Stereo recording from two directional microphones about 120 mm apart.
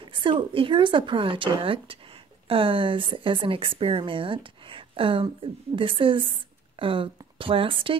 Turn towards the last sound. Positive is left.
turn(degrees=-45)  # may be behind; listen again after turning